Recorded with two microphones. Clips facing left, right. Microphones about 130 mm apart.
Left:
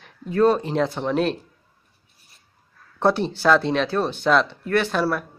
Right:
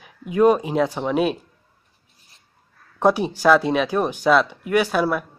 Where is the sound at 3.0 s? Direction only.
10° right (ahead or behind).